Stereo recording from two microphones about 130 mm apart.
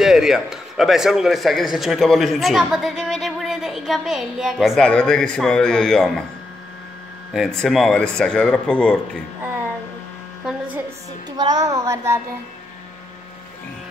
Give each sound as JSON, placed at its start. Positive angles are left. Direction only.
{"t": 0.0, "sound": "a man's voice", "side_deg": -5}
{"t": 7.3, "sound": "a man's voice", "side_deg": 0}
{"t": 11.2, "sound": "a child's voice", "side_deg": -30}